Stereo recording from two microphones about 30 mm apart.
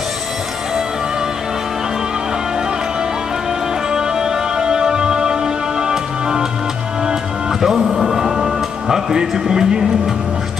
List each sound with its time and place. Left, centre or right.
3.9 s music: centre
7.6 s speech: centre
8.1 s music: centre
9.3 s speech: centre